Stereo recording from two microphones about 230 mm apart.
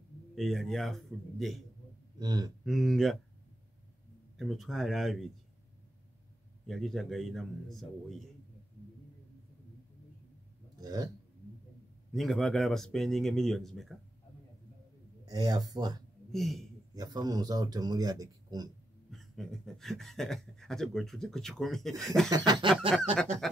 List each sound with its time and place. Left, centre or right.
0.4 s speech: centre
2.1 s speech: centre
2.6 s speech: centre
4.4 s speech: centre
6.7 s speech: centre
10.8 s speech: centre
12.1 s speech: centre
15.2 s speech: centre
16.3 s a man's voice: centre
16.9 s speech: centre
19.0 s speech: centre
22.3 s snicker: centre